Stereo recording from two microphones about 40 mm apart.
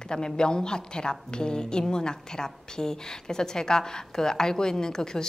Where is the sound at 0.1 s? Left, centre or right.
Left.